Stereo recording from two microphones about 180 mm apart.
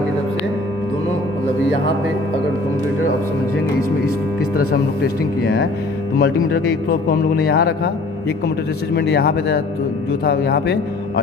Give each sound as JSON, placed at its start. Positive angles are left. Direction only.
{"t": 5.4, "sound": "speech", "side_deg": 60}
{"t": 8.9, "sound": "speech", "side_deg": 65}